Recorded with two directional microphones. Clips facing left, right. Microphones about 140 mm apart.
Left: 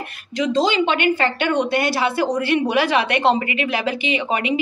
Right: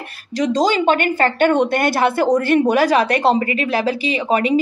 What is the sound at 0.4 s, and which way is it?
A woman's voice, 40° right (ahead or behind).